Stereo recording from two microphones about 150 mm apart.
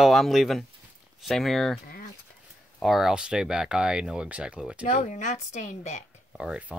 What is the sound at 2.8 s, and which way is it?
Speech, centre (ahead or behind).